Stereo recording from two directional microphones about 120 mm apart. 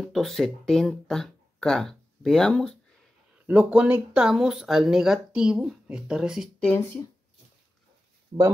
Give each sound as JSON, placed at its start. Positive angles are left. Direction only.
{"t": 0.0, "sound": "speech", "side_deg": 0}
{"t": 3.4, "sound": "speech", "side_deg": -10}
{"t": 8.3, "sound": "speech", "side_deg": -40}